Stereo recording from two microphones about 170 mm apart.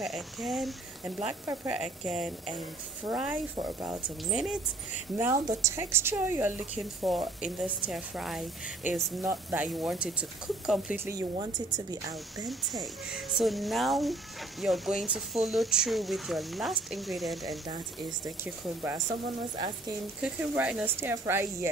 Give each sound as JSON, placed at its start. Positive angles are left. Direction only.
{"t": 0.0, "sound": "speech", "side_deg": 0}
{"t": 1.4, "sound": "speech", "side_deg": -15}
{"t": 1.7, "sound": "speech", "side_deg": 0}
{"t": 5.1, "sound": "speech", "side_deg": -15}
{"t": 7.0, "sound": "speech", "side_deg": 0}
{"t": 11.3, "sound": "speech", "side_deg": -25}
{"t": 12.4, "sound": "speech", "side_deg": 0}
{"t": 18.2, "sound": "speech", "side_deg": -15}
{"t": 20.2, "sound": "speech", "side_deg": -5}